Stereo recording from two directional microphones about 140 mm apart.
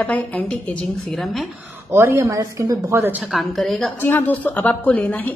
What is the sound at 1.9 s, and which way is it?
A woman's voice, 20° right (ahead or behind).